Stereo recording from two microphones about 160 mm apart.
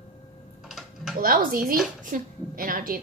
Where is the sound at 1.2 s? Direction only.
65° right (ahead or behind).